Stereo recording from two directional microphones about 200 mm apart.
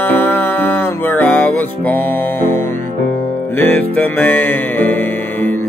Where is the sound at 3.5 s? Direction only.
10° left (ahead or behind).